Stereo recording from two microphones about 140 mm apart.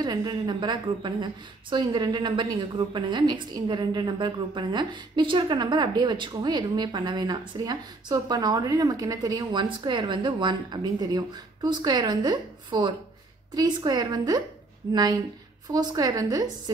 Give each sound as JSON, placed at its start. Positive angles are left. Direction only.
{"t": 0.0, "sound": "a woman's voice", "side_deg": -30}